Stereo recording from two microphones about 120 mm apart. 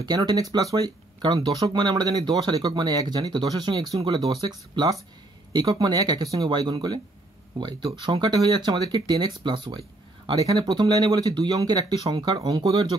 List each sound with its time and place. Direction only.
0.0 s speech: 35° right (ahead or behind)